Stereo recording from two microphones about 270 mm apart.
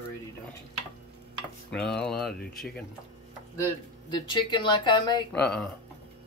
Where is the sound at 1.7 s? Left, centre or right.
Centre.